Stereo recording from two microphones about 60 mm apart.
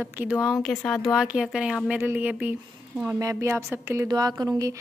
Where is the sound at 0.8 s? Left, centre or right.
Centre.